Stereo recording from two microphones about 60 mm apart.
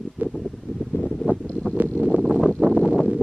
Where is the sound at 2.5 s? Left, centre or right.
Centre.